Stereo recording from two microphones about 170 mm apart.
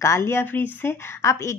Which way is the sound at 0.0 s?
15° left (ahead or behind).